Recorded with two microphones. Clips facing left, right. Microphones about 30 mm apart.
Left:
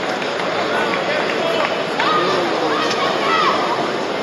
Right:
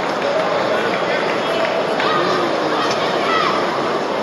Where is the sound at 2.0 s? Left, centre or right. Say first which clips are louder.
Left 3 dB; centre.